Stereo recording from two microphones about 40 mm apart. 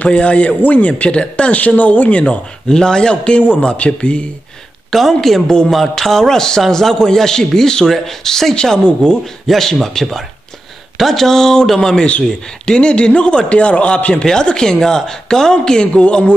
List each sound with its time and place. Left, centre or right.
0.0 s speech: left
2.7 s speech: centre
4.9 s a woman's voice: centre
8.8 s speech: left
9.2 s speech: centre
12.1 s speech: left